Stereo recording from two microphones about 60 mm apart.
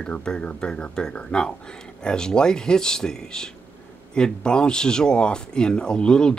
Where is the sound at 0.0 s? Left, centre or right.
Centre.